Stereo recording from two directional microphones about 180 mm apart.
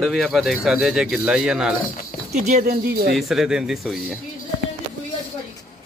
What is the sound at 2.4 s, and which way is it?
Speech, 45° right (ahead or behind).